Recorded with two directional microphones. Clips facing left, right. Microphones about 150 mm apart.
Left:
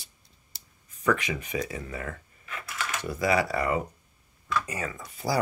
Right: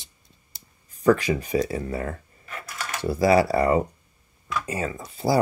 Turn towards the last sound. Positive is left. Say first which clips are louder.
# right 6 dB
turn(degrees=-25)  # may be behind; listen again after turning